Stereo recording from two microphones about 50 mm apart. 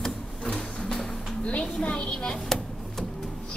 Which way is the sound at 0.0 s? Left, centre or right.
Centre.